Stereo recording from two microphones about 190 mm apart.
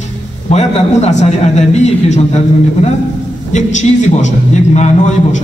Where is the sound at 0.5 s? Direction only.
35° left (ahead or behind).